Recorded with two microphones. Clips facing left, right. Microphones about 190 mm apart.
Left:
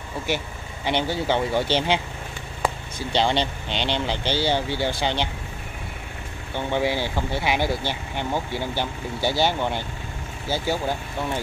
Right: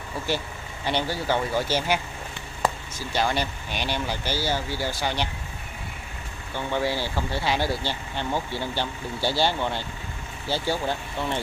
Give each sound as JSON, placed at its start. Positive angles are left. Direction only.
{"t": 0.8, "sound": "speech", "side_deg": 20}
{"t": 3.2, "sound": "speech", "side_deg": 25}
{"t": 6.5, "sound": "speech", "side_deg": 20}